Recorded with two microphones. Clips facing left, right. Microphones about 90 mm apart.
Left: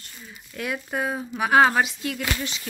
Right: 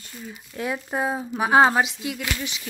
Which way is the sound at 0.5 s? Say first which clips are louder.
Right 1 dB; 25° right (ahead or behind).